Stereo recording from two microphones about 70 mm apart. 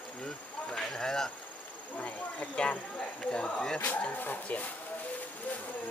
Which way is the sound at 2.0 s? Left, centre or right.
Left.